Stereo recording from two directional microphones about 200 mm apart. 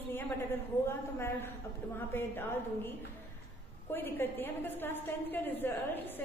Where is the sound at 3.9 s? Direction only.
10° left (ahead or behind).